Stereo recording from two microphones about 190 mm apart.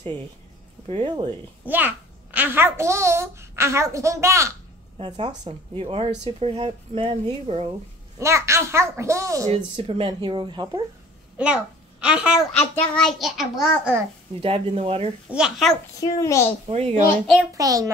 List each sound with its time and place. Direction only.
0.8 s speech: 25° right (ahead or behind)
1.7 s a child's voice: 10° right (ahead or behind)
4.9 s speech: 30° right (ahead or behind)
8.2 s a child's voice: 15° right (ahead or behind)
9.5 s speech: 30° right (ahead or behind)
11.3 s a child's voice: 5° right (ahead or behind)
14.4 s speech: 30° right (ahead or behind)
15.3 s a child's voice: centre (ahead or behind)
16.0 s a child's voice: 15° left (ahead or behind)
16.6 s speech: 35° right (ahead or behind)
17.6 s speech: 20° right (ahead or behind)